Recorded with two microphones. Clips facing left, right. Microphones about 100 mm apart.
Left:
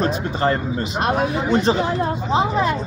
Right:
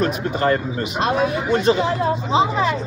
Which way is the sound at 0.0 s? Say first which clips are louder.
Even; 30° left (ahead or behind).